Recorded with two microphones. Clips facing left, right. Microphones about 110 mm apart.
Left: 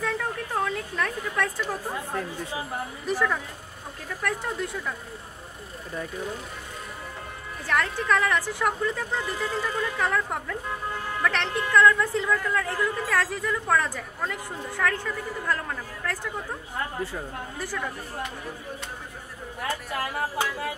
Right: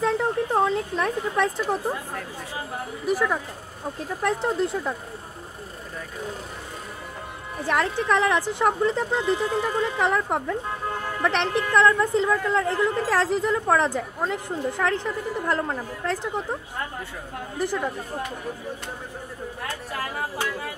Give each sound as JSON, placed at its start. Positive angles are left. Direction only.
{"t": 0.0, "sound": "a sound", "side_deg": -25}
{"t": 3.1, "sound": "speech", "side_deg": -10}
{"t": 4.1, "sound": "a woman's voice", "side_deg": -25}
{"t": 7.6, "sound": "a woman's voice", "side_deg": -20}
{"t": 17.6, "sound": "a woman's voice", "side_deg": -20}
{"t": 19.9, "sound": "speech", "side_deg": 0}